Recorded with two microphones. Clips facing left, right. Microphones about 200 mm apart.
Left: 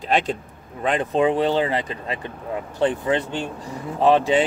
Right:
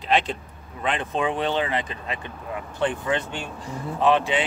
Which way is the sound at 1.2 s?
30° left (ahead or behind).